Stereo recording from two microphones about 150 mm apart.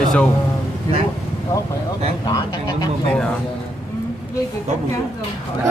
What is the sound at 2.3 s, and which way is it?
Speech, 25° left (ahead or behind).